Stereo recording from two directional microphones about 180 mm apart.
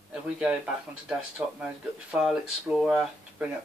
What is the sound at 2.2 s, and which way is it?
Speech, centre (ahead or behind).